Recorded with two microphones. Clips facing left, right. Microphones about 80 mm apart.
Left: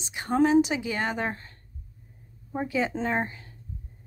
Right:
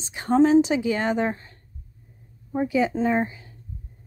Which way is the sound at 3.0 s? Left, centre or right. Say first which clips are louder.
Right 5 dB; centre.